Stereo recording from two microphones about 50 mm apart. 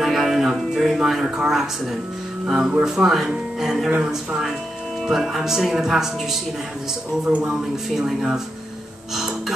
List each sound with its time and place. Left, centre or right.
0.0 s a sound: centre
0.6 s speech: centre
5.0 s speech: centre
7.2 s speech: centre